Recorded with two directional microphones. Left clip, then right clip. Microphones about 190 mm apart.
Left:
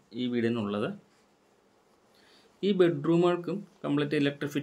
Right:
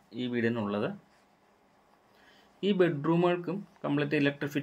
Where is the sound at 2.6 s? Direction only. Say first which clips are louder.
Left 2 dB; 10° left (ahead or behind).